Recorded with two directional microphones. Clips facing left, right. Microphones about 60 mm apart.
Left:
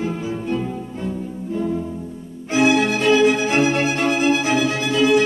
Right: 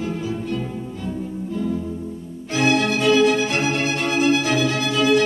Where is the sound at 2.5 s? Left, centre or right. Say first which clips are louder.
Left 3 dB; centre.